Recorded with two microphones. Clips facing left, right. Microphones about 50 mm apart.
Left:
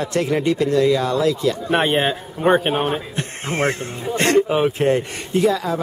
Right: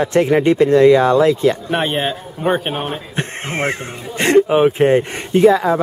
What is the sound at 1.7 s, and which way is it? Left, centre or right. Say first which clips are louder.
A man's voice: left 1 dB; centre.